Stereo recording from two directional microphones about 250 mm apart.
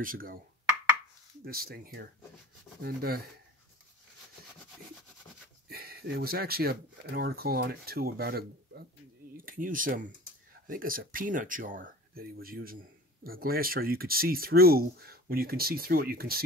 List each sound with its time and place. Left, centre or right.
0.0 s speech: right
1.4 s speech: right
5.7 s speech: right